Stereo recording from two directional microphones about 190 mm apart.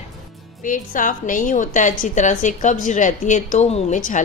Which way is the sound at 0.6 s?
45° left (ahead or behind).